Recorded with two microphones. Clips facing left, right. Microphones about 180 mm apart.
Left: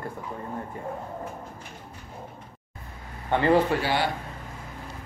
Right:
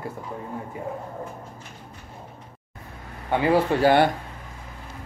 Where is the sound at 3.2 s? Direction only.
10° right (ahead or behind).